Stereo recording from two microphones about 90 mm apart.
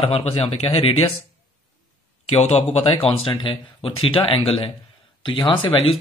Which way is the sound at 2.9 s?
90° left.